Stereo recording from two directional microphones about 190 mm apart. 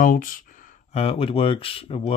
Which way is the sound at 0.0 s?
45° left (ahead or behind).